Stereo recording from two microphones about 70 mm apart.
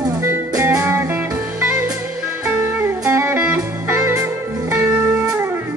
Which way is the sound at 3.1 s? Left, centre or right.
Right.